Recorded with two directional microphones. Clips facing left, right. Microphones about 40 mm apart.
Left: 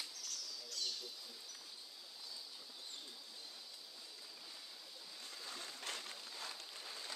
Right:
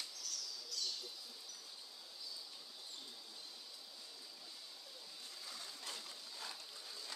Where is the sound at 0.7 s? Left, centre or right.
Left.